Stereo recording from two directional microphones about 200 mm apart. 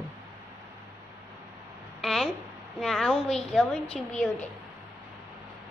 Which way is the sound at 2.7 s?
Centre (ahead or behind).